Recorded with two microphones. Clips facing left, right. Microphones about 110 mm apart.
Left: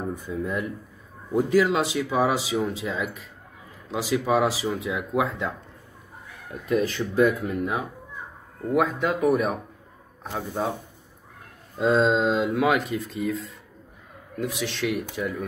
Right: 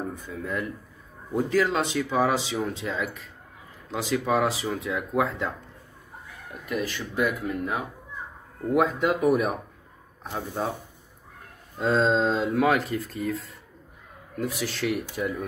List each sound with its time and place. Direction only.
0.1 s speech: 15° left (ahead or behind)
6.7 s speech: 30° left (ahead or behind)
8.7 s speech: 5° right (ahead or behind)
11.8 s speech: 5° left (ahead or behind)
14.4 s speech: 5° right (ahead or behind)